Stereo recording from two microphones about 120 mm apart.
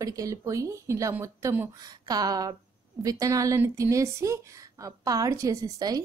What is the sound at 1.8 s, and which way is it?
Speech, 30° right (ahead or behind).